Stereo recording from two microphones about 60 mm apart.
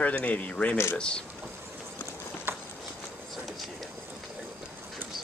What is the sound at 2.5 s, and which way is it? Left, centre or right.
Walk, right.